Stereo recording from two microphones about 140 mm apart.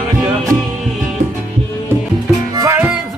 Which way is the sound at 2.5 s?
25° right (ahead or behind).